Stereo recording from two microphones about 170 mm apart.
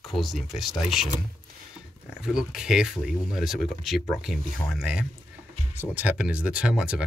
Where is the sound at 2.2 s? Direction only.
5° right (ahead or behind).